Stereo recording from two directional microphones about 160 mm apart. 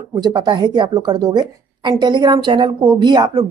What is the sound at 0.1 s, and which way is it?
Speech, 30° right (ahead or behind).